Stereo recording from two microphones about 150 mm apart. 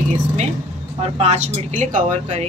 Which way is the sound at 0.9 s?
45° right (ahead or behind).